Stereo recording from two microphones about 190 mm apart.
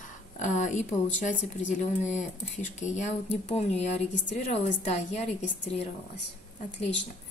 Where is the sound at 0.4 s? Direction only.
40° left (ahead or behind).